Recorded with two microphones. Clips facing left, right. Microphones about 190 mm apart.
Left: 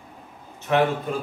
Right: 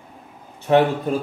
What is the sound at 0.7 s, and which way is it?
Speech, 30° right (ahead or behind).